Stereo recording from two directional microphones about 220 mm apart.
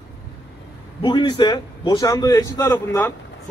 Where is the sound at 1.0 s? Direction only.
25° left (ahead or behind).